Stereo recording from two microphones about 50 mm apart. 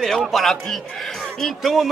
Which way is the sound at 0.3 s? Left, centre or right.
Centre.